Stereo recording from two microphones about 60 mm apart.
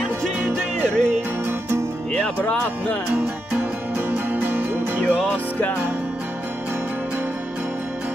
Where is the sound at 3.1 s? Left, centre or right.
Right.